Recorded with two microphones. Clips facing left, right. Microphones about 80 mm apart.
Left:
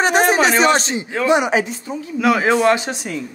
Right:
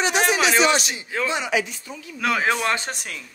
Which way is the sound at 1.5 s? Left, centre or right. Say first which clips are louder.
Left 5 dB; left.